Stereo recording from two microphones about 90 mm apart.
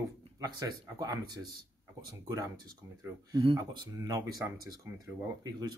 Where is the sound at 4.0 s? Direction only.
40° right (ahead or behind).